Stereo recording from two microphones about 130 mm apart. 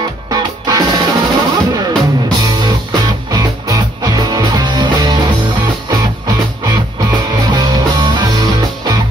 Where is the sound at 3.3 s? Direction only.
30° right (ahead or behind).